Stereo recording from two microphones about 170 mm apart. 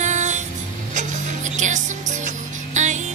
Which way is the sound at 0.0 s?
45° right (ahead or behind).